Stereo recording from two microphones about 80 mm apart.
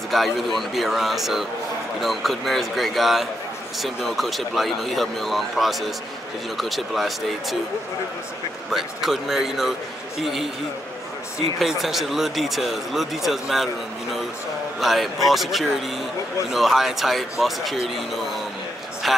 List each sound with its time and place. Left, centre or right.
0.1 s speech: centre
8.7 s speech: centre
11.5 s speech: centre
14.8 s speech: centre